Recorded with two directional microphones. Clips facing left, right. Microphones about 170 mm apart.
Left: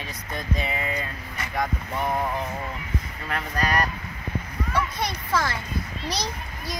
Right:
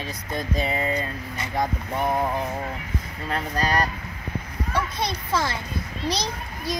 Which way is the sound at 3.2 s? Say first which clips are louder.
Right 2 dB; 30° right (ahead or behind).